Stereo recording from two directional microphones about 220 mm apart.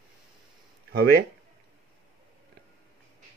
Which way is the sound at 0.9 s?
45° right (ahead or behind).